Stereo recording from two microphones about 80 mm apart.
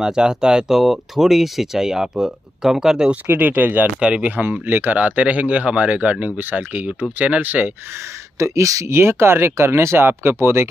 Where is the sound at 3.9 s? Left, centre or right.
Centre.